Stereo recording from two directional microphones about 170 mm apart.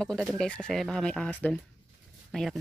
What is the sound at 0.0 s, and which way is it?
Speech, centre (ahead or behind).